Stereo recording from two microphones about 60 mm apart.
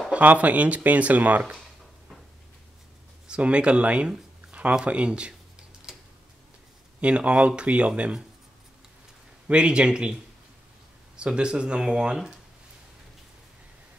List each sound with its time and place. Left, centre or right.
0.1 s speech: right
3.3 s speech: centre
7.0 s speech: centre
9.5 s speech: centre
11.1 s speech: centre